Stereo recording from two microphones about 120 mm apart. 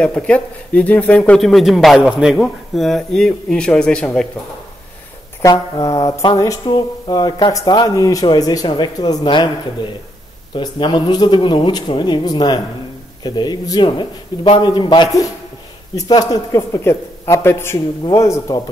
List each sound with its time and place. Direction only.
0.0 s speech: 10° left (ahead or behind)
5.4 s speech: 35° left (ahead or behind)